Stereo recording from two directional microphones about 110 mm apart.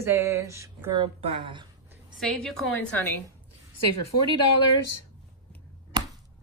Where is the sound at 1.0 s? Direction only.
55° right (ahead or behind).